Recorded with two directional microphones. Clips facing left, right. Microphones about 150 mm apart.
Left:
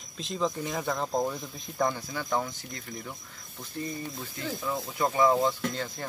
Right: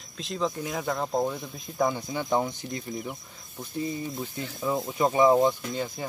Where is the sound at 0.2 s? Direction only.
Centre (ahead or behind).